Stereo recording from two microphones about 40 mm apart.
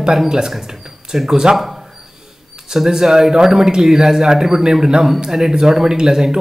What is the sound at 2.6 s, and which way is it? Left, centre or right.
A man's voice, centre.